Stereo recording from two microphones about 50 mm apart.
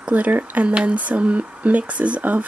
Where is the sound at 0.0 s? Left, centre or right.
Right.